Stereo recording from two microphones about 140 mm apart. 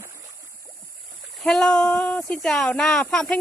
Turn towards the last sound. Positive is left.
turn(degrees=5)  # may be behind; listen again after turning